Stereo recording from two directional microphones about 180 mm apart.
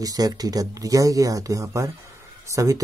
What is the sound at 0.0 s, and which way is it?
Speech, 20° right (ahead or behind).